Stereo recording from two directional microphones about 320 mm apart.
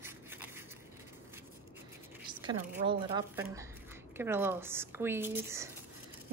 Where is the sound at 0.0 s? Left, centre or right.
Centre.